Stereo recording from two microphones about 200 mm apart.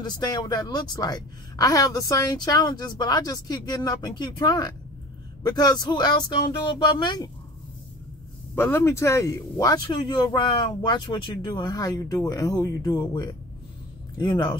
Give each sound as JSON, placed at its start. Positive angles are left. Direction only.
{"t": 0.0, "sound": "a woman's voice", "side_deg": 20}
{"t": 8.5, "sound": "a woman's voice", "side_deg": 10}